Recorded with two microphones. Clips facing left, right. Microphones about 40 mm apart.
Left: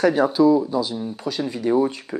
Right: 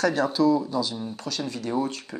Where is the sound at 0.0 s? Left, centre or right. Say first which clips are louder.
Left 5 dB; centre.